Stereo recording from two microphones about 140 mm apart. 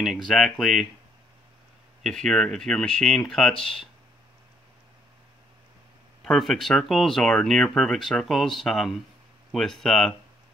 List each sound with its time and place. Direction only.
0.3 s speech: centre (ahead or behind)
2.0 s speech: 5° left (ahead or behind)
6.2 s speech: centre (ahead or behind)